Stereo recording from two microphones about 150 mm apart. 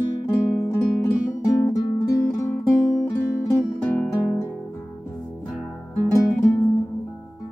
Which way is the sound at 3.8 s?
10° left (ahead or behind).